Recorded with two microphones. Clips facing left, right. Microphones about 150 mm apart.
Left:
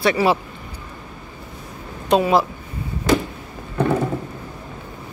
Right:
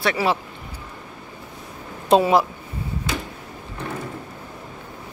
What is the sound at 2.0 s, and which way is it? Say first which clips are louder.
Speech: right 1 dB; 30° right (ahead or behind).